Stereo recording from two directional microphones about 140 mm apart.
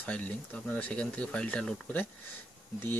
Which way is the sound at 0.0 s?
10° left (ahead or behind).